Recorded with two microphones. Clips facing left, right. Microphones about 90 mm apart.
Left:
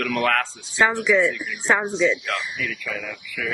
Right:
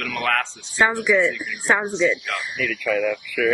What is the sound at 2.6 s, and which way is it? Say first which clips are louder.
Speech: right 7 dB; 60° right (ahead or behind).